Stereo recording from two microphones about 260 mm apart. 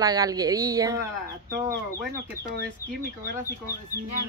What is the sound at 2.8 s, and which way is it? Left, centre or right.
Speech, left.